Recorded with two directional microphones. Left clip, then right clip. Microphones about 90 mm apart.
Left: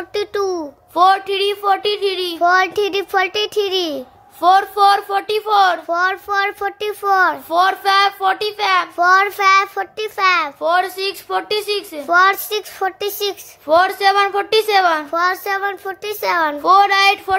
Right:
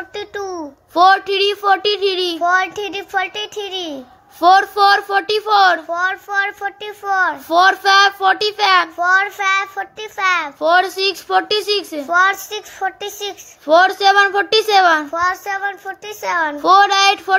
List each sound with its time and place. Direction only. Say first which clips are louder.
0.1 s a child's voice: left 9 dB; 30° left (ahead or behind)
0.9 s a child's voice: right 2 dB; 20° right (ahead or behind)
2.4 s a child's voice: left 4 dB; 30° left (ahead or behind); by 4.0 s 50° left (ahead or behind)
4.4 s a child's voice: right 1 dB; 25° right (ahead or behind)
5.9 s a child's voice: left 2 dB; 25° left (ahead or behind)
7.4 s a child's voice: right 3 dB; 30° right (ahead or behind)
8.9 s a child's voice: left 2 dB; 35° left (ahead or behind)
10.6 s a child's voice: right 3 dB; 35° right (ahead or behind)
12.1 s a child's voice: left 2 dB; 20° left (ahead or behind)
13.7 s a child's voice: right 2 dB; 20° right (ahead or behind)
15.1 s a child's voice: left 1 dB; 25° left (ahead or behind)
16.6 s a child's voice: right 1 dB; 20° right (ahead or behind)